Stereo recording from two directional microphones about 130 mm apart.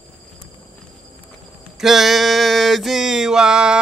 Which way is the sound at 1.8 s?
Centre (ahead or behind).